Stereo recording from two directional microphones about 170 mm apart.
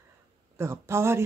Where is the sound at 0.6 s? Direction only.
15° right (ahead or behind).